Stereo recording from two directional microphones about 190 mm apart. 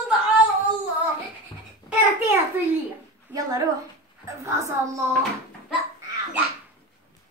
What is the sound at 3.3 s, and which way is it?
A woman's voice, 20° right (ahead or behind).